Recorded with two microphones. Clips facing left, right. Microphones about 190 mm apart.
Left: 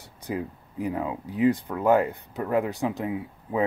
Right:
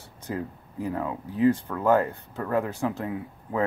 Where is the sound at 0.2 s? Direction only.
15° left (ahead or behind).